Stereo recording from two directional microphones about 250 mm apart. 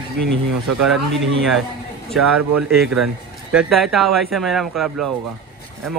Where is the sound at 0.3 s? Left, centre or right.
Right.